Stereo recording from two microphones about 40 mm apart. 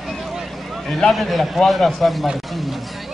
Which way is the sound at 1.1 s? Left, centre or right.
Centre.